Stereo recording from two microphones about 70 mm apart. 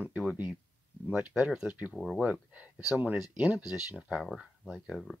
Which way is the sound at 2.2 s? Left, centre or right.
Centre.